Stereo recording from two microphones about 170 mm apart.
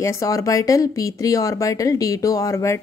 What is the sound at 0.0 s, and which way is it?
Speech, 20° left (ahead or behind).